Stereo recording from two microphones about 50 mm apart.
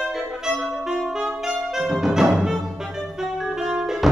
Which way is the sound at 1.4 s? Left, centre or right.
Centre.